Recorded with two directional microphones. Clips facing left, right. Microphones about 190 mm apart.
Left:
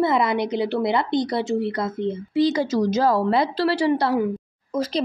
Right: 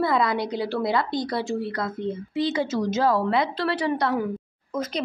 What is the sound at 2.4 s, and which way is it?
A woman's voice, 40° left (ahead or behind).